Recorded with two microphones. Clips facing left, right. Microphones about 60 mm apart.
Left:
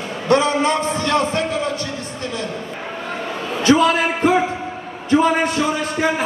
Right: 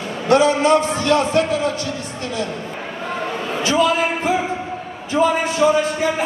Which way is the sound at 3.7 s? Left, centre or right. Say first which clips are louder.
Left 3 dB; left.